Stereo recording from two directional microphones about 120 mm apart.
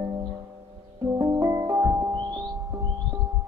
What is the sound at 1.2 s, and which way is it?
Music, 25° right (ahead or behind).